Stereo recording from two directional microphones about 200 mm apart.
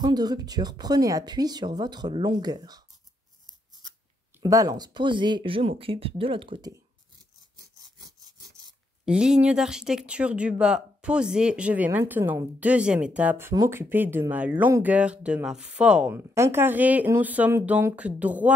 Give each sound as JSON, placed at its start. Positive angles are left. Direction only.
{"t": 0.0, "sound": "speech", "side_deg": -20}
{"t": 4.4, "sound": "speech", "side_deg": -15}
{"t": 7.5, "sound": "sawing", "side_deg": -20}
{"t": 9.0, "sound": "speech", "side_deg": -5}